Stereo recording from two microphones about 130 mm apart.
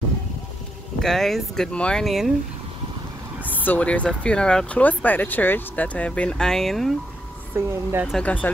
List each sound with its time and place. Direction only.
0.9 s speech: centre (ahead or behind)
3.5 s speech: 15° left (ahead or behind)
7.5 s speech: 15° right (ahead or behind)
8.2 s speech: 10° left (ahead or behind)